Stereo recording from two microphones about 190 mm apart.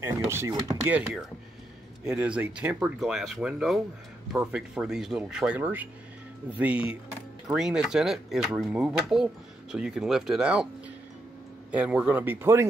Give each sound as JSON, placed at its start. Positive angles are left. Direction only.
{"t": 0.0, "sound": "speech", "side_deg": -15}
{"t": 0.8, "sound": "speech", "side_deg": -5}
{"t": 11.7, "sound": "speech", "side_deg": -5}